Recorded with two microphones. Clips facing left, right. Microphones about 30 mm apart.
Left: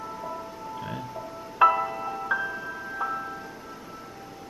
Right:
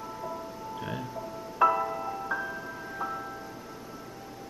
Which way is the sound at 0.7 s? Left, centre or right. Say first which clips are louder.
Even; centre.